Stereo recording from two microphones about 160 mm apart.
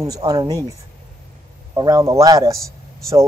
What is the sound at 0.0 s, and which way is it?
Speech, 25° right (ahead or behind).